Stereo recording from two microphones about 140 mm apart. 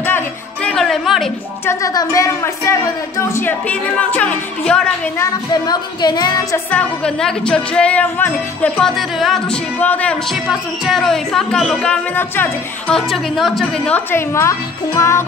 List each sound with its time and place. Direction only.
0.7 s music: 5° left (ahead or behind)
1.7 s a woman's voice: 25° left (ahead or behind); by 4.8 s 10° left (ahead or behind)
5.2 s speech: 30° left (ahead or behind)
6.5 s a woman's voice: 10° left (ahead or behind)
10.5 s speech: centre (ahead or behind)
13.9 s speech: 20° left (ahead or behind)